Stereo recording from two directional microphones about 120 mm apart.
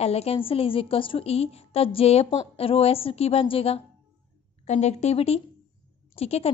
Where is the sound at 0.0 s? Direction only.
60° left (ahead or behind).